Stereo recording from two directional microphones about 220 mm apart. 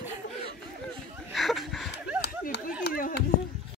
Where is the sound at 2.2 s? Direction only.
50° left (ahead or behind).